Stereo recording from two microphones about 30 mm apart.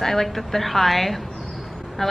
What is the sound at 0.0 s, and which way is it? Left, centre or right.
A woman's voice, centre.